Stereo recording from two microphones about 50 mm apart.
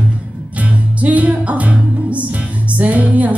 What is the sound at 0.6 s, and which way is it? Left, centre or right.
Music, right.